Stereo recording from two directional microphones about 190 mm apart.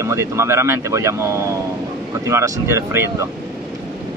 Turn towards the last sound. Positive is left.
turn(degrees=-15)  # may be behind; listen again after turning